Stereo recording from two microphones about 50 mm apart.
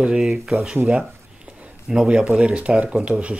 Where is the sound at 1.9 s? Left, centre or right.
Right.